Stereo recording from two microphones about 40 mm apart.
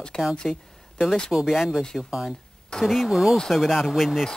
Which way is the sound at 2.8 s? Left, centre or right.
Centre.